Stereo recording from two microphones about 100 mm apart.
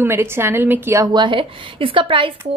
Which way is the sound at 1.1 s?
50° right (ahead or behind).